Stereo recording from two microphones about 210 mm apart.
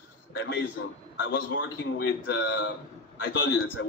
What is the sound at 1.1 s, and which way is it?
A man's voice, 60° left (ahead or behind).